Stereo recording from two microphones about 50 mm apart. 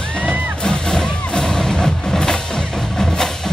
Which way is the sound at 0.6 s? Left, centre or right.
Centre.